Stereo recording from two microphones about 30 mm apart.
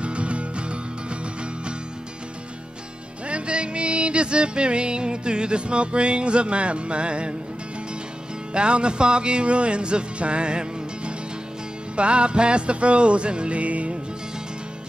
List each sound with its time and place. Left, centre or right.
0.0 s music: right
3.3 s music: right
8.5 s music: right
13.6 s music: right